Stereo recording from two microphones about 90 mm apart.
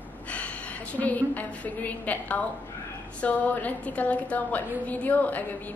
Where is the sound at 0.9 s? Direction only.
20° left (ahead or behind).